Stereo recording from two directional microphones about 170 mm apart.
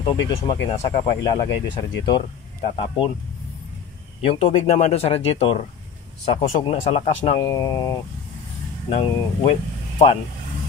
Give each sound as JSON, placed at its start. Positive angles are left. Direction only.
{"t": 0.0, "sound": "speech", "side_deg": 30}
{"t": 4.2, "sound": "speech", "side_deg": 35}
{"t": 7.3, "sound": "speech", "side_deg": 20}
{"t": 8.9, "sound": "speech", "side_deg": 40}